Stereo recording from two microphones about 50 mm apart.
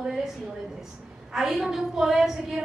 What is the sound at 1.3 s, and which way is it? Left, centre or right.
A woman's voice, centre.